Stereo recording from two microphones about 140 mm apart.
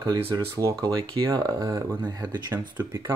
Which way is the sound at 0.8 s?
30° right (ahead or behind).